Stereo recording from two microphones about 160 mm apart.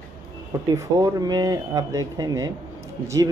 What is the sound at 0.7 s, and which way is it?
Speech, 25° right (ahead or behind).